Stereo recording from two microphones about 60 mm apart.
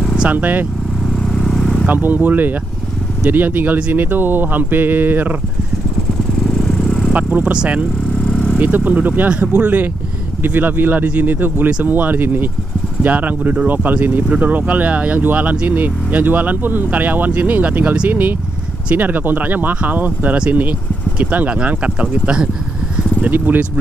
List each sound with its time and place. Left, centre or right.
0.2 s speech: right
1.3 s vehicle: centre
1.9 s speech: right
6.4 s vehicle: centre
7.1 s speech: right
8.2 s vehicle: centre
8.5 s speech: right
9.3 s speech: centre
10.4 s speech: right
23.3 s speech: right